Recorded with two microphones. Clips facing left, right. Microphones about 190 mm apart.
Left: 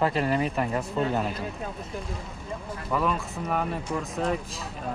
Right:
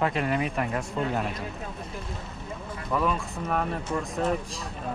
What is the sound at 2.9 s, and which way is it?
Speech, centre (ahead or behind).